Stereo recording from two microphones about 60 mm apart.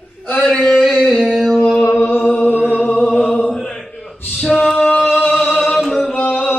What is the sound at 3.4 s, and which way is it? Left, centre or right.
Mantra, centre.